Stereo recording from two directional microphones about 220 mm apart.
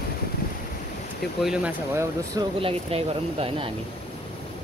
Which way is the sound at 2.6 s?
25° right (ahead or behind).